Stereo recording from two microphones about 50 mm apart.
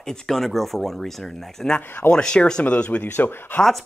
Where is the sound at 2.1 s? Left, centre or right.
Centre; by 3.6 s left.